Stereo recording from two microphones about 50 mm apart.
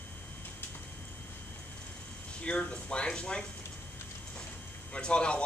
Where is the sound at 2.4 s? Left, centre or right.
Left.